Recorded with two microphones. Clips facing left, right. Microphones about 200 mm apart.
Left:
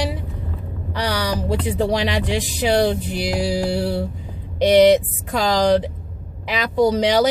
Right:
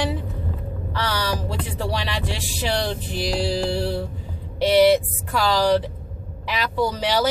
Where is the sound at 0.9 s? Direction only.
15° left (ahead or behind).